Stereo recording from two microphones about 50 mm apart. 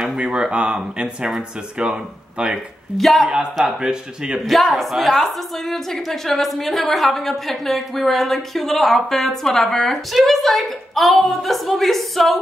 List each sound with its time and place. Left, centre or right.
0.0 s speech: centre
3.0 s a woman's voice: centre
3.6 s speech: centre
4.7 s a woman's voice: centre